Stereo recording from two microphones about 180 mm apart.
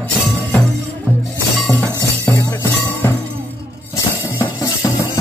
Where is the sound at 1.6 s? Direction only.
5° left (ahead or behind).